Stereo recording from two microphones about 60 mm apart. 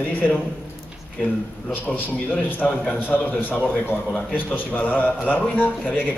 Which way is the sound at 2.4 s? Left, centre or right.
Left.